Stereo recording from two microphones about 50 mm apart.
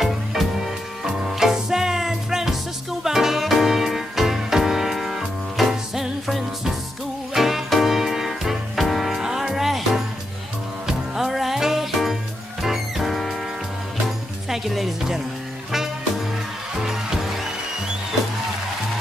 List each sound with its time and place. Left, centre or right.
0.0 s music: centre